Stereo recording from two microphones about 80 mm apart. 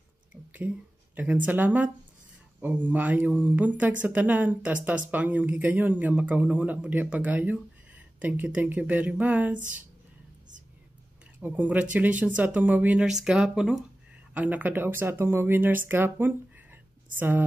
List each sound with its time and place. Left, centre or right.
0.3 s speech: centre
11.3 s speech: centre
13.0 s speech: centre
14.3 s speech: centre